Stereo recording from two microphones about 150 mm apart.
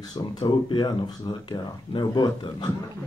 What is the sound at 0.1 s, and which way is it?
Speech, 30° left (ahead or behind).